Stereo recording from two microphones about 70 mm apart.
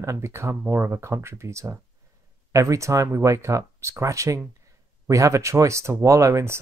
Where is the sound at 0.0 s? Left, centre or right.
Right.